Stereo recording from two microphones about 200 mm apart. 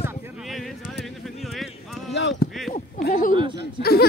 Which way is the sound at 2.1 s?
60° left (ahead or behind).